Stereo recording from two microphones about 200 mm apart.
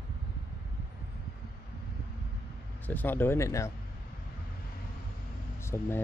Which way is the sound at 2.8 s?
10° left (ahead or behind).